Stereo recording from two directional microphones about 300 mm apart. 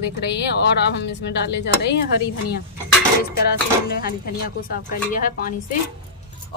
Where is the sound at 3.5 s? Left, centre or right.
Left.